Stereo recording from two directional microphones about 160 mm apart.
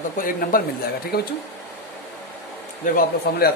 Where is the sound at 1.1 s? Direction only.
75° left (ahead or behind).